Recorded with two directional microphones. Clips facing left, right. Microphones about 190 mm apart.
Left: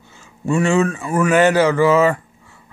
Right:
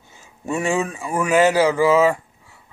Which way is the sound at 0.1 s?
15° right (ahead or behind).